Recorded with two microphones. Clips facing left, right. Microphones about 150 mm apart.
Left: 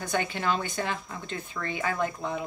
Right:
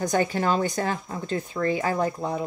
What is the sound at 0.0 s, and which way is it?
Speech, 40° right (ahead or behind).